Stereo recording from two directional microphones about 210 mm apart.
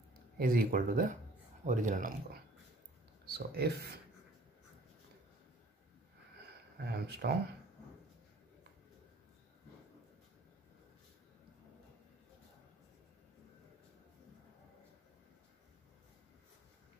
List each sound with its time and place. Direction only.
0.1 s speech: 45° right (ahead or behind)
3.3 s speech: 50° right (ahead or behind)
6.8 s speech: 50° right (ahead or behind)